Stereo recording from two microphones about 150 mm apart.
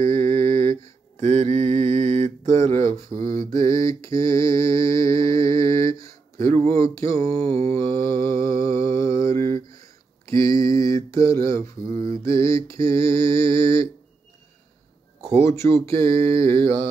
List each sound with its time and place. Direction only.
0.0 s mantra: 15° left (ahead or behind)
1.2 s mantra: 50° right (ahead or behind)
3.2 s mantra: 70° right (ahead or behind)
3.5 s mantra: 20° left (ahead or behind)
6.5 s speech: 40° right (ahead or behind)
7.2 s mantra: 40° right (ahead or behind)
8.1 s mantra: 20° left (ahead or behind)
10.2 s a sound: 20° left (ahead or behind)
12.1 s mantra: 20° left (ahead or behind)
15.4 s speech: 20° left (ahead or behind)